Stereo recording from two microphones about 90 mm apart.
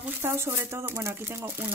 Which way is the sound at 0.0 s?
25° right (ahead or behind).